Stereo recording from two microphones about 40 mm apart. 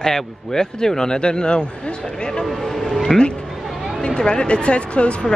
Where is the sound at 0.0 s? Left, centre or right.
Centre.